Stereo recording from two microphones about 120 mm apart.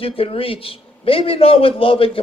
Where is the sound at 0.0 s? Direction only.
50° left (ahead or behind).